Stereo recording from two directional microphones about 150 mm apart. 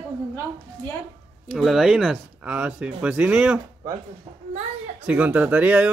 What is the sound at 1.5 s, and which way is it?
Speech, centre (ahead or behind).